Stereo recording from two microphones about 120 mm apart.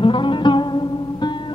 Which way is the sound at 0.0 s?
45° left (ahead or behind).